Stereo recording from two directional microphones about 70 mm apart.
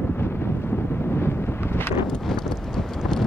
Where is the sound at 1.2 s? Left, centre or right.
Left.